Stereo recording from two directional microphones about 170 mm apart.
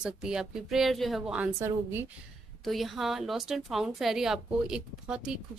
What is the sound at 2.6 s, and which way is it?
A woman's voice, centre (ahead or behind).